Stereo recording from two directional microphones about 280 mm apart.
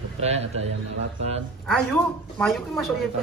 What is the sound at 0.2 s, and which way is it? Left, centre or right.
Speech, right.